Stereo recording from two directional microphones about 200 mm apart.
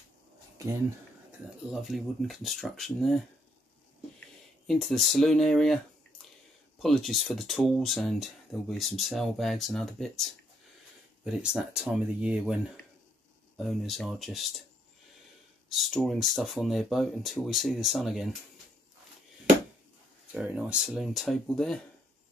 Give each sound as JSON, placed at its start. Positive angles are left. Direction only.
{"t": 0.6, "sound": "speech", "side_deg": -15}
{"t": 1.7, "sound": "speech", "side_deg": 0}
{"t": 4.6, "sound": "speech", "side_deg": 0}
{"t": 6.8, "sound": "speech", "side_deg": 0}
{"t": 15.7, "sound": "speech", "side_deg": 0}
{"t": 20.3, "sound": "speech", "side_deg": -5}